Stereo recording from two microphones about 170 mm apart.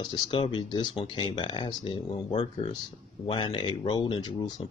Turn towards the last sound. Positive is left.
turn(degrees=25)  # may be behind; listen again after turning